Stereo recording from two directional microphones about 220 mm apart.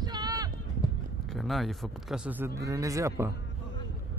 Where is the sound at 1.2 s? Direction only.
Centre (ahead or behind).